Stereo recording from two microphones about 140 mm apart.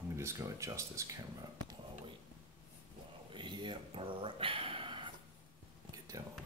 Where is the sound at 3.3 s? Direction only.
35° right (ahead or behind).